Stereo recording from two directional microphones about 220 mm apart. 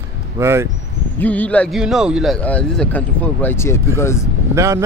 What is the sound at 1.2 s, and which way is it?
Speech, 5° left (ahead or behind).